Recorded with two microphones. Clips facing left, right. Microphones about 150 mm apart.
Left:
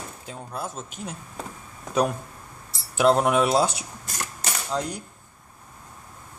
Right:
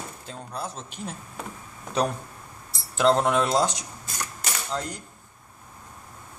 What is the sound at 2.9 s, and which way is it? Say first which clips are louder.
Speech: left 2 dB; 10° left (ahead or behind).